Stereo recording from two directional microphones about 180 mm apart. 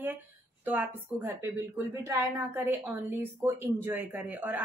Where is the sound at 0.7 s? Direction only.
15° right (ahead or behind).